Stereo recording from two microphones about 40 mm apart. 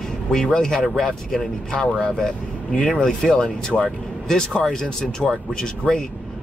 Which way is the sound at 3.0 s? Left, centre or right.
Centre.